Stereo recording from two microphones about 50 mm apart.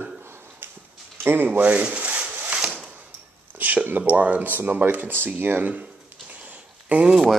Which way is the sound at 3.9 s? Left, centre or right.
Right.